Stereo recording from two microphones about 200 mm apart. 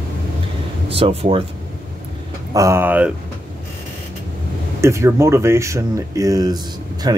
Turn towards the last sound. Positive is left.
turn(degrees=-20)  # may be behind; listen again after turning